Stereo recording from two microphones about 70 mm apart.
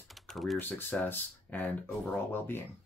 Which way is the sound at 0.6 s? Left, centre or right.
Left.